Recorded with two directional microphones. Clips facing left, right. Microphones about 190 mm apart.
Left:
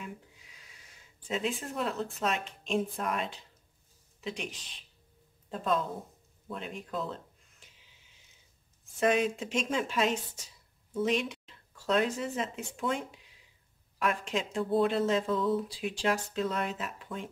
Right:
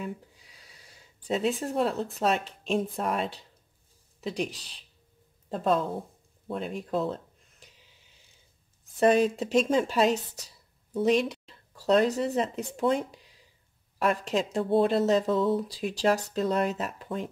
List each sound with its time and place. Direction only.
0.0 s a woman's voice: 35° right (ahead or behind)
9.0 s speech: 35° right (ahead or behind)